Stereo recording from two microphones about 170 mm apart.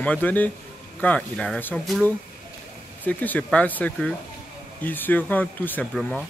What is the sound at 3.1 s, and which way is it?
Speech, 10° left (ahead or behind).